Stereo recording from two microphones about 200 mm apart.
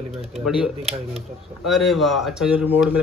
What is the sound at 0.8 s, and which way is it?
Speech, 30° right (ahead or behind).